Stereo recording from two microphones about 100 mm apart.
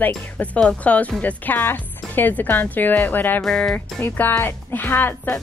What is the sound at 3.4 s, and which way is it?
Speech, 5° left (ahead or behind).